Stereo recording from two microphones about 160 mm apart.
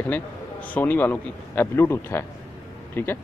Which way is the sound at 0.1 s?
10° left (ahead or behind).